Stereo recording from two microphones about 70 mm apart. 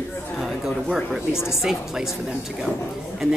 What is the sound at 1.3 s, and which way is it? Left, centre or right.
Speech, left.